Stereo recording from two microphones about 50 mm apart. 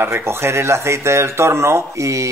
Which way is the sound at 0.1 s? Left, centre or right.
Right.